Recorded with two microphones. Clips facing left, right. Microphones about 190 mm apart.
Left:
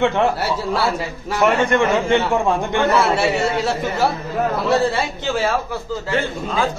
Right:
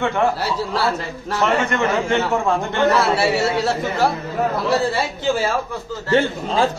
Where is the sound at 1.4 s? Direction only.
15° left (ahead or behind).